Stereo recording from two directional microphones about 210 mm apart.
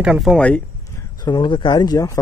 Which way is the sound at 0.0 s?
Centre (ahead or behind).